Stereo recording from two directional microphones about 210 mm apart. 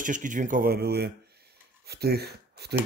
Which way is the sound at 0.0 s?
40° right (ahead or behind).